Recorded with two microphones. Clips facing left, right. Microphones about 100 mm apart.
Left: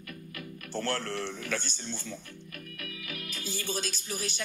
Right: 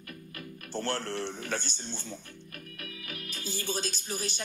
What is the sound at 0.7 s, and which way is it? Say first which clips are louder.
Speech: even; 30° right (ahead or behind).